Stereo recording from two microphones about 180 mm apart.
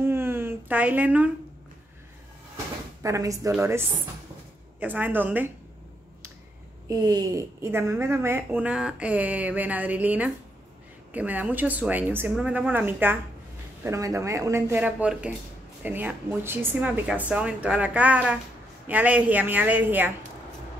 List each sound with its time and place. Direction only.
0.0 s a sound: 15° right (ahead or behind)
2.5 s drawer open or close: 15° right (ahead or behind)
3.5 s a woman's voice: 15° right (ahead or behind)
6.9 s a woman's voice: 20° right (ahead or behind)